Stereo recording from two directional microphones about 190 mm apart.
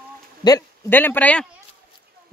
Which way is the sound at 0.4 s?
20° left (ahead or behind).